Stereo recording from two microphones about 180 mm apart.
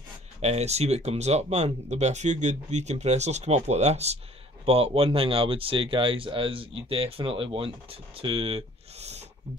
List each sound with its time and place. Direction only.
0.4 s speech: 35° right (ahead or behind)